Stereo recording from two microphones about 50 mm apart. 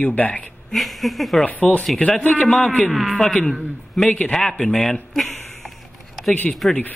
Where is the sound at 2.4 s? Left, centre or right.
Centre.